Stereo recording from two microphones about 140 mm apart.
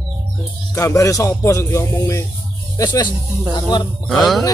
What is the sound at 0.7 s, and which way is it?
Speech, 20° left (ahead or behind).